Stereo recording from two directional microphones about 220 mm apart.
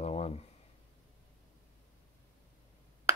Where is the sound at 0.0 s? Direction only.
30° left (ahead or behind).